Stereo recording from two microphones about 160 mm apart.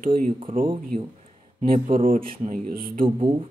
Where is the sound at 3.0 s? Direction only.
35° right (ahead or behind).